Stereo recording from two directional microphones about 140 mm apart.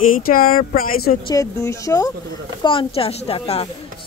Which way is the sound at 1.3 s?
25° left (ahead or behind).